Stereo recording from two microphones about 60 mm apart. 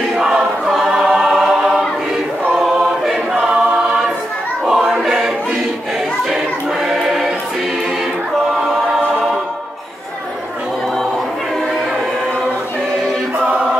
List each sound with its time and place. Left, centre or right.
0.1 s choir: centre
3.3 s choir: centre